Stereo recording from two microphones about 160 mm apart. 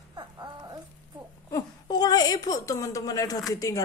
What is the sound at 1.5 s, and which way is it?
A woman's voice, 25° left (ahead or behind).